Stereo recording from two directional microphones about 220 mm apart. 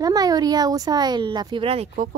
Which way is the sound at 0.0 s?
15° right (ahead or behind).